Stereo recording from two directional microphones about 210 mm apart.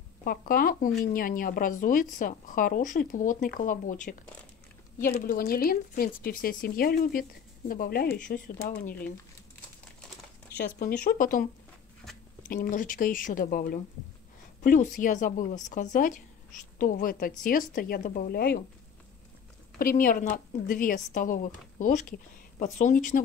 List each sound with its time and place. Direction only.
0.2 s speech: 45° left (ahead or behind)
10.6 s speech: 40° left (ahead or behind)
12.4 s a woman's voice: 40° left (ahead or behind)
19.8 s speech: 40° left (ahead or behind)